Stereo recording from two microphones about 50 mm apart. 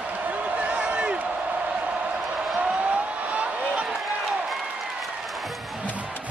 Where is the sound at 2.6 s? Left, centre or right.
Right.